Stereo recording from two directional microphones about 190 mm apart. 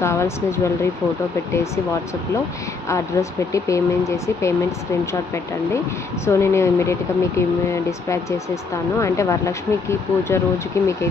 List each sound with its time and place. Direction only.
0.0 s speech: 15° left (ahead or behind)
2.9 s speech: 15° left (ahead or behind)
6.2 s speech: 15° left (ahead or behind)